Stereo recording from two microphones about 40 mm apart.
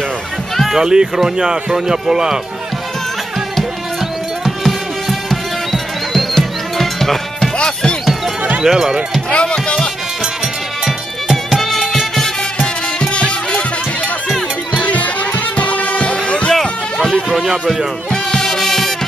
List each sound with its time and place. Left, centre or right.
0.7 s speech: centre
4.6 s music: centre
7.5 s music: left
8.6 s speech: centre
9.3 s music: left
10.9 s music: centre
13.0 s music: left
14.8 s music: left
16.5 s a sound: centre
18.1 s music: centre